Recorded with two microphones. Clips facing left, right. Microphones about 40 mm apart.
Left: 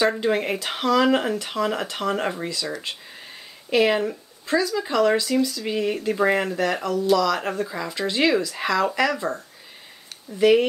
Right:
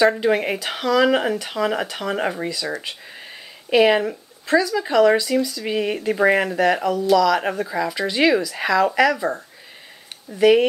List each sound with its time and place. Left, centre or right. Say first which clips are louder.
0.2 s speech: right 3 dB; centre